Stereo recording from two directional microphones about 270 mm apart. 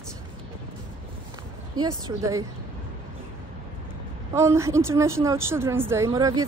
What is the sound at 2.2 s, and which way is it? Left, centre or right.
Speech, centre.